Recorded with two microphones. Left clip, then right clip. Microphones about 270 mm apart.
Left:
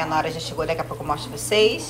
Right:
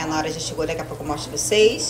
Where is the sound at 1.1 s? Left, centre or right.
Centre.